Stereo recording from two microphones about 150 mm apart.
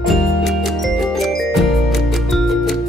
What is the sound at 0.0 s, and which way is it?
Music, centre (ahead or behind).